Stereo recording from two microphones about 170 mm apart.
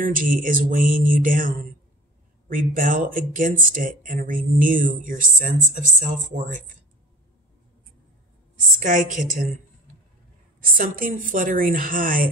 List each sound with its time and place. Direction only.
0.0 s speech: 55° right (ahead or behind)
8.7 s speech: 50° right (ahead or behind)
10.8 s speech: 55° right (ahead or behind)